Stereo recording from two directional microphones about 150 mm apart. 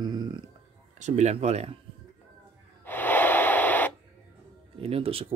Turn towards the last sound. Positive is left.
turn(degrees=-40)  # may be behind; listen again after turning